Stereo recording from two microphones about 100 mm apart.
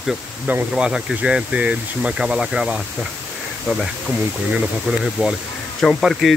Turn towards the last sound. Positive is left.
turn(degrees=0)  # may be behind; listen again after turning